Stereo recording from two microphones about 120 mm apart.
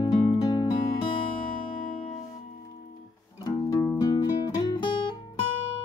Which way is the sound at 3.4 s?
30° left (ahead or behind).